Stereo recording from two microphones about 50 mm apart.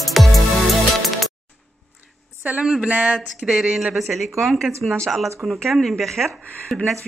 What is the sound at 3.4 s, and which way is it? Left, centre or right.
Speech, centre.